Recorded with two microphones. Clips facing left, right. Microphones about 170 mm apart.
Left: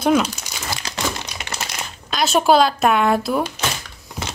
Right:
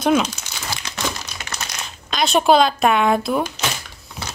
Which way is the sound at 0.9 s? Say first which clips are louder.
Left 3 dB; 35° left (ahead or behind).